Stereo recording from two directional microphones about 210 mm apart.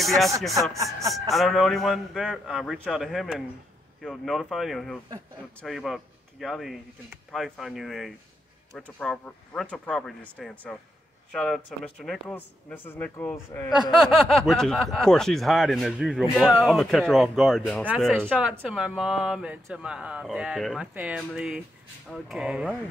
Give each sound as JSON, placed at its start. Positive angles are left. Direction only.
{"t": 0.0, "sound": "speech", "side_deg": 0}
{"t": 0.7, "sound": "speech", "side_deg": -15}
{"t": 1.3, "sound": "speech", "side_deg": 0}
{"t": 13.9, "sound": "speech", "side_deg": 0}